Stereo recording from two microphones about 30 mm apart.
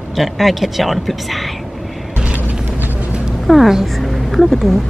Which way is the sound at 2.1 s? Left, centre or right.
Right.